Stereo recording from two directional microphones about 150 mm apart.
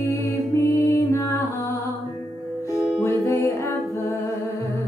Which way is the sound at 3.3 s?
20° left (ahead or behind).